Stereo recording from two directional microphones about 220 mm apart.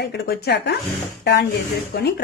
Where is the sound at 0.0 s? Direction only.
50° left (ahead or behind).